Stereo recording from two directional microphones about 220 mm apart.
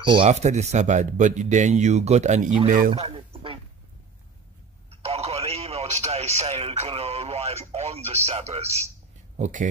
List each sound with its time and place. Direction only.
0.0 s speech: 20° right (ahead or behind)
2.9 s a sound: 25° right (ahead or behind)
5.0 s radio: 25° right (ahead or behind)
9.4 s speech: 35° right (ahead or behind)